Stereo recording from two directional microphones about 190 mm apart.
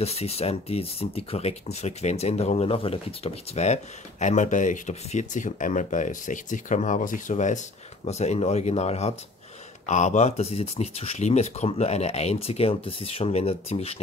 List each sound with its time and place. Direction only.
0.0 s speech: 35° left (ahead or behind)